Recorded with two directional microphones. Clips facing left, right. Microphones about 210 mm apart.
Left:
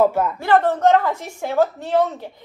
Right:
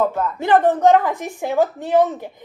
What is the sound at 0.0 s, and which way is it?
Speech, 10° left (ahead or behind).